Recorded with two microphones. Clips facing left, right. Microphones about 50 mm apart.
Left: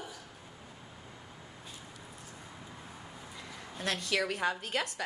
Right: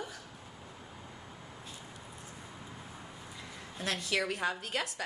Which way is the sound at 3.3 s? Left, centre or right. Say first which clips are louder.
Left 2 dB; centre.